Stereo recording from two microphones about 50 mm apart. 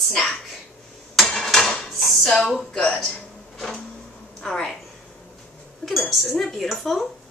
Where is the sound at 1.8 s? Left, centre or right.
Centre.